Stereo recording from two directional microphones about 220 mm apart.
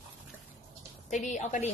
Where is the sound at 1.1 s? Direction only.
35° left (ahead or behind).